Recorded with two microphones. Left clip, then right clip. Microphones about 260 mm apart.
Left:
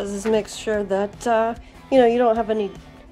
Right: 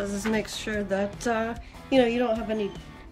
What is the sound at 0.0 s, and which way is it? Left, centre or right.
Speech, centre.